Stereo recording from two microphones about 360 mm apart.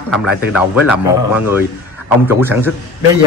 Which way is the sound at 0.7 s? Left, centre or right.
Left.